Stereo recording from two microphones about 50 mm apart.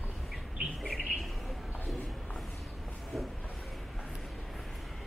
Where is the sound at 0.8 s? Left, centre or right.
Centre.